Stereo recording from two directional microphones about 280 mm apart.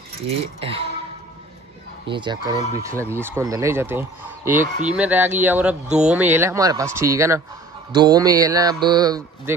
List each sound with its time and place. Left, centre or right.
0.4 s speech: centre
2.0 s speech: centre